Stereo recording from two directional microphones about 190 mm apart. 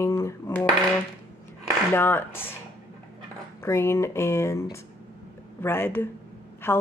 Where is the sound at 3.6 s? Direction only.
15° left (ahead or behind).